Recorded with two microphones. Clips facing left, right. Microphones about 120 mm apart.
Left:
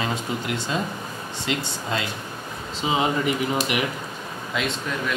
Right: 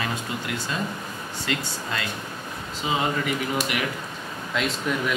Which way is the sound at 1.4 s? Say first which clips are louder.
Left 2 dB; 20° left (ahead or behind).